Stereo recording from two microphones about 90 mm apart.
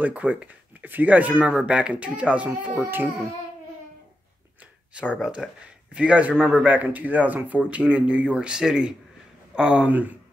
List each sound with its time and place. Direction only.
0.0 s speech: 15° right (ahead or behind)
4.9 s speech: 10° right (ahead or behind)